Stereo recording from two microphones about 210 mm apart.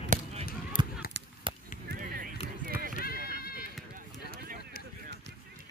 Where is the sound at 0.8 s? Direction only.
20° right (ahead or behind).